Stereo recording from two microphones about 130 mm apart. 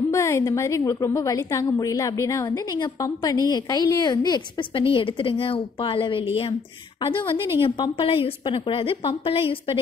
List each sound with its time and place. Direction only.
0.1 s a woman's voice: 20° left (ahead or behind); by 7.3 s 45° left (ahead or behind)
7.3 s a woman's voice: 20° right (ahead or behind)
7.6 s a woman's voice: 40° left (ahead or behind)